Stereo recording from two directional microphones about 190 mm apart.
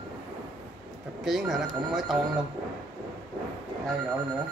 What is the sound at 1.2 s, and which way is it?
Speech, centre (ahead or behind).